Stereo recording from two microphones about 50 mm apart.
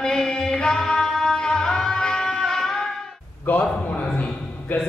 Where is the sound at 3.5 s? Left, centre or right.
Left.